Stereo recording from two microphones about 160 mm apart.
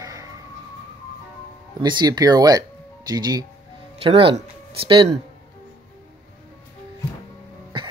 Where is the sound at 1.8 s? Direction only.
25° right (ahead or behind).